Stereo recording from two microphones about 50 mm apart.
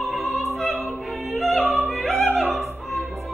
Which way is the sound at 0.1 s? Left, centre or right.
Centre.